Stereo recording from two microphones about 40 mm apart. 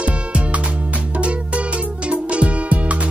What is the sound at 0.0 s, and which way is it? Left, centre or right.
Music, right.